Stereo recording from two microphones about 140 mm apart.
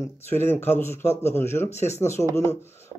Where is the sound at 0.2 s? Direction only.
15° left (ahead or behind).